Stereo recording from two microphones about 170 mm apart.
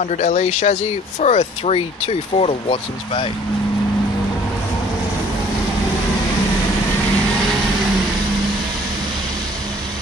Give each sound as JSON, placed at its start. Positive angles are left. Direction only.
{"t": 0.1, "sound": "speech", "side_deg": 45}